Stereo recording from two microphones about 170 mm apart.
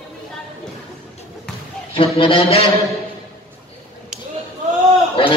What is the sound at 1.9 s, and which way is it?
Speech, 35° left (ahead or behind).